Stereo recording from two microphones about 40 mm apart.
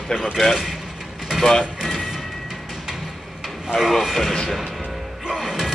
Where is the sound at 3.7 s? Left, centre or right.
Centre.